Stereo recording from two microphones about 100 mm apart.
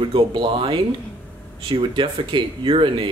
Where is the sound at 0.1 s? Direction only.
55° right (ahead or behind).